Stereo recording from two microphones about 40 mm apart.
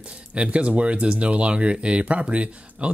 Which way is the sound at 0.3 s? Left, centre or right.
Right.